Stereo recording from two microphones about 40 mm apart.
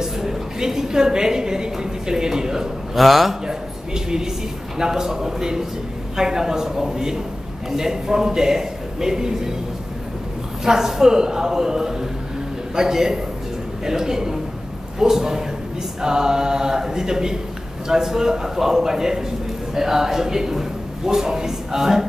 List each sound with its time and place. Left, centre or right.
0.0 s a woman's voice: centre
2.9 s a man's voice: centre
3.4 s a man's voice: centre
10.6 s a man's voice: centre